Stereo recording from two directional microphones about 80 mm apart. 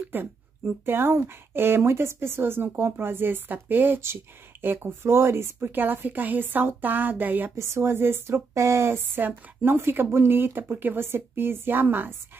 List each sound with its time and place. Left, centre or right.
0.1 s speech: right
7.5 s speech: right